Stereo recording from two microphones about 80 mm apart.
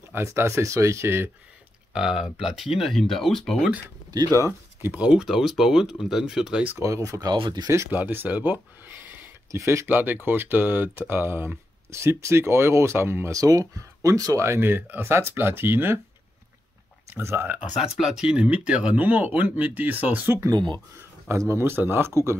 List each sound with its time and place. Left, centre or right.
0.1 s speech: right
2.0 s speech: centre
3.5 s speech: centre
4.8 s speech: centre
5.1 s speech: centre
6.8 s speech: right
7.3 s speech: right
7.9 s speech: right
9.8 s speech: right
13.3 s speech: right
17.1 s speech: right
17.7 s speech: centre; by 20.3 s right
21.4 s speech: right